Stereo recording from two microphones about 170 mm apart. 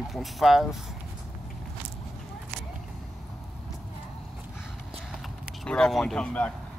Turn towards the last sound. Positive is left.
turn(degrees=5)  # may be behind; listen again after turning